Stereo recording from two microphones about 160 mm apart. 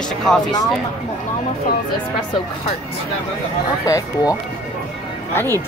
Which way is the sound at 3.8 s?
20° left (ahead or behind).